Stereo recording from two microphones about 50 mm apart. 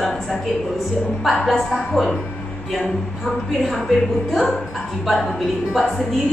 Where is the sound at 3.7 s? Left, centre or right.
Centre.